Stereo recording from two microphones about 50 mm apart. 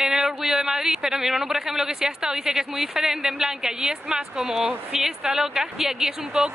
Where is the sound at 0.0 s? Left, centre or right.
Centre.